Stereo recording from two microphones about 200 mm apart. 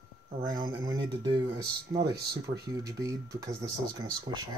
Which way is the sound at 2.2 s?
55° right (ahead or behind).